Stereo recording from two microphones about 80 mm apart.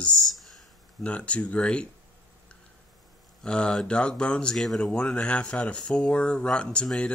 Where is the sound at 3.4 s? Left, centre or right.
Centre.